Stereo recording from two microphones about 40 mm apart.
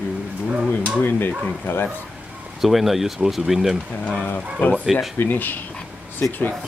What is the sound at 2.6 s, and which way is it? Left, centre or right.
Speech, centre.